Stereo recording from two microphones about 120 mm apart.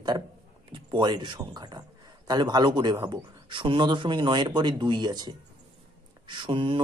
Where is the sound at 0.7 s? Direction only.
40° right (ahead or behind).